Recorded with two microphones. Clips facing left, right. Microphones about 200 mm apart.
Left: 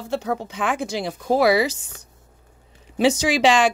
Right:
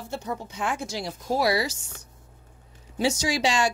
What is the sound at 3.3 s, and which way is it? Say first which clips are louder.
Speech: left 7 dB; 90° left.